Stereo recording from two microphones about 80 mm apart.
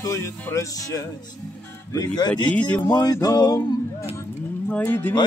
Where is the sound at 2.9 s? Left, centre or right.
Left.